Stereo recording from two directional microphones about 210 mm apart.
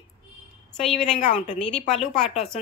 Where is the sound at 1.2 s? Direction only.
35° left (ahead or behind).